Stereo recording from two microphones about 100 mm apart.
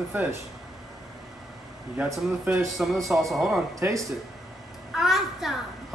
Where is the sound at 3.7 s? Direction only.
30° right (ahead or behind).